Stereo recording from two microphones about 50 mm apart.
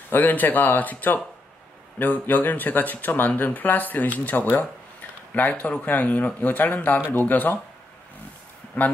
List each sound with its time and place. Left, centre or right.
0.1 s speech: left
8.8 s speech: left